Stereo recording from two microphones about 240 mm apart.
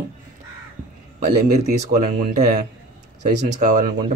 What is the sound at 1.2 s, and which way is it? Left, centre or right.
Speech, right.